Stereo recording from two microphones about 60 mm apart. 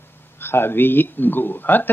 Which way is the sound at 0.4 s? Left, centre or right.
Left.